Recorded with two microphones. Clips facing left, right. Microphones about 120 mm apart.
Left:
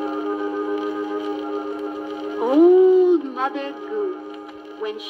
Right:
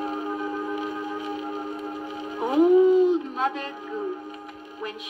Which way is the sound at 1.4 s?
25° left (ahead or behind).